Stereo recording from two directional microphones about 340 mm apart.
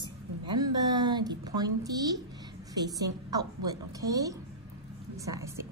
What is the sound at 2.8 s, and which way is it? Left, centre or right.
A woman's voice, centre.